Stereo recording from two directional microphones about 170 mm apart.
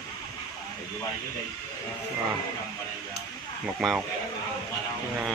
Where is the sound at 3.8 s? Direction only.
Centre (ahead or behind).